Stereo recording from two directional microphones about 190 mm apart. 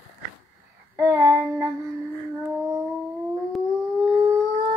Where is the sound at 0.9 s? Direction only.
15° right (ahead or behind).